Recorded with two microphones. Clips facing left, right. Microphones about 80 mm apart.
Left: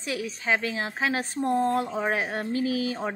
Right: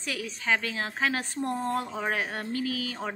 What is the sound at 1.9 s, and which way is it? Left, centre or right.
Speech, centre.